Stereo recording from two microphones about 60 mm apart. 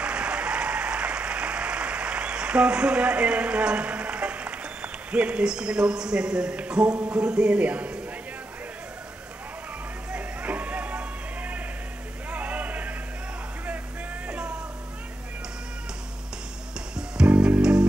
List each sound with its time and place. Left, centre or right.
0.0 s applause: centre
6.6 s a man's voice: centre
10.1 s a sound: right
14.2 s music: centre
16.9 s music: centre